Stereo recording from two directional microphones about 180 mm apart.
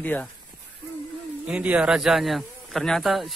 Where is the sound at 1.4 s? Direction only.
5° right (ahead or behind).